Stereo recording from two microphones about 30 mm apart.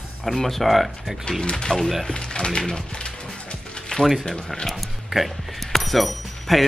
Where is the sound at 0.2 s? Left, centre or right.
Centre.